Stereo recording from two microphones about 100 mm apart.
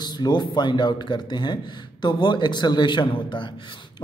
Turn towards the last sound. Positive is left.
turn(degrees=55)  # may be behind; listen again after turning